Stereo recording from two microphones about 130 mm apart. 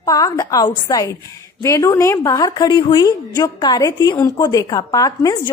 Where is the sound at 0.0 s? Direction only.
25° left (ahead or behind).